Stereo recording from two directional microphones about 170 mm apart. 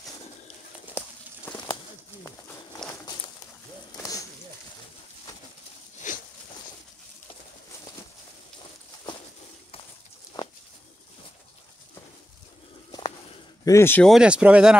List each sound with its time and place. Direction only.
1.5 s bird: 25° left (ahead or behind)
2.9 s a sound: 25° left (ahead or behind)
6.0 s a sound: 50° left (ahead or behind)
10.3 s bird: 25° left (ahead or behind)
13.7 s speech: 15° left (ahead or behind)
14.0 s speech: 5° right (ahead or behind)